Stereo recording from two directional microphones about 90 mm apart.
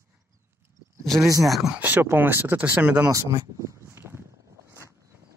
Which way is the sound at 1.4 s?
5° right (ahead or behind).